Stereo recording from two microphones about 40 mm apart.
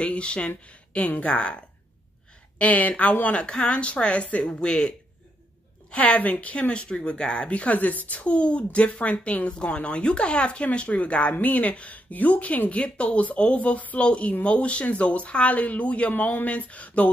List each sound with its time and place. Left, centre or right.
0.0 s speech: left
0.7 s speech: left
1.3 s speech: left
2.6 s speech: left
3.4 s speech: left
5.9 s a woman's voice: left
6.2 s speech: left
6.7 s speech: left
16.1 s speech: left